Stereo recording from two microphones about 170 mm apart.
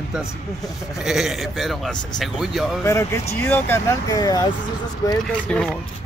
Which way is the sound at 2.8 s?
15° left (ahead or behind).